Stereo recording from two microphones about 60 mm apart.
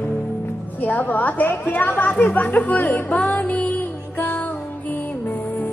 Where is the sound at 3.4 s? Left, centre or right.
Left.